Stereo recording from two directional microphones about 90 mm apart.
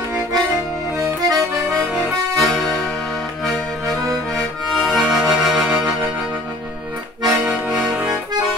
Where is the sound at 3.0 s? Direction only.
Centre (ahead or behind).